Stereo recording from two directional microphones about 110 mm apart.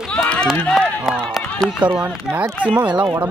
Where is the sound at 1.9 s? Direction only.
15° right (ahead or behind).